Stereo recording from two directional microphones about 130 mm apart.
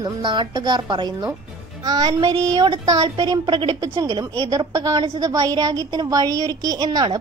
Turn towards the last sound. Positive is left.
turn(degrees=-35)  # may be behind; listen again after turning